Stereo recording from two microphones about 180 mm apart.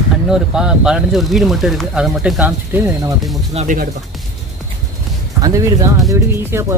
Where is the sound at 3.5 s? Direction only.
35° right (ahead or behind).